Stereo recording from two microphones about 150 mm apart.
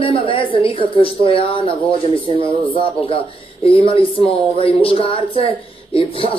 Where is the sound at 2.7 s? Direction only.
35° left (ahead or behind).